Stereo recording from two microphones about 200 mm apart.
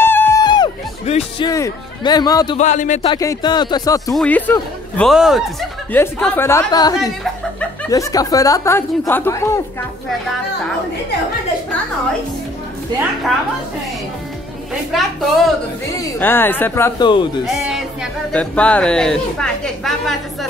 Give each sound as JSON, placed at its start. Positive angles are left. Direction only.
{"t": 0.0, "sound": "music", "side_deg": 10}
{"t": 1.1, "sound": "music", "side_deg": 35}
{"t": 1.4, "sound": "speech", "side_deg": 20}
{"t": 2.5, "sound": "speech", "side_deg": 35}
{"t": 3.1, "sound": "speech", "side_deg": 20}
{"t": 4.1, "sound": "a woman's voice", "side_deg": 5}
{"t": 14.9, "sound": "a woman's voice", "side_deg": 0}
{"t": 16.0, "sound": "speech", "side_deg": 10}
{"t": 17.1, "sound": "speech", "side_deg": 25}
{"t": 17.5, "sound": "a woman's voice", "side_deg": -5}